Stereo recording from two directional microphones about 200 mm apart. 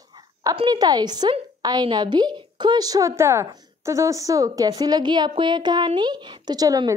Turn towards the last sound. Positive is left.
turn(degrees=-20)  # may be behind; listen again after turning